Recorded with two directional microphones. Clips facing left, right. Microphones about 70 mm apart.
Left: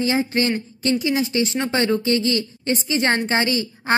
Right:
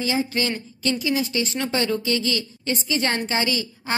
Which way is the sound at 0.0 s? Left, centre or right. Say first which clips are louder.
Left 4 dB; left.